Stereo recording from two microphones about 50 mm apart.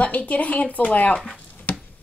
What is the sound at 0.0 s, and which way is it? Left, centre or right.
Speech, left.